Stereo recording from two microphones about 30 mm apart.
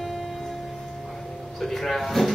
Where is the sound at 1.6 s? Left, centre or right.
Centre.